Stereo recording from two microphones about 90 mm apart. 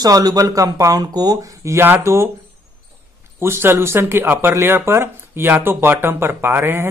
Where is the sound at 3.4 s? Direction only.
25° right (ahead or behind).